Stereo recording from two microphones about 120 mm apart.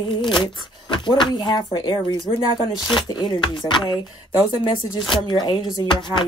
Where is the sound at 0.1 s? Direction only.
40° left (ahead or behind).